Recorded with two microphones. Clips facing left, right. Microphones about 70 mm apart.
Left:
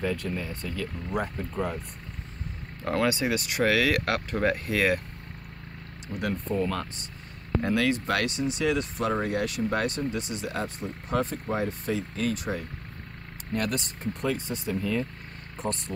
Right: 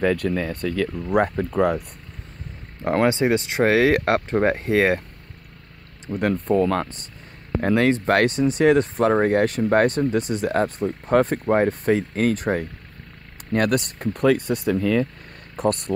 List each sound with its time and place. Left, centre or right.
0.0 s speech: right
2.8 s speech: right
6.1 s speech: right
7.6 s speech: right
15.5 s speech: right